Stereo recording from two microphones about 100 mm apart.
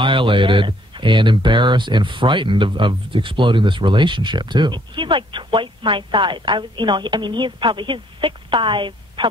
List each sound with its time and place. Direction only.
0.0 s speech: 55° right (ahead or behind)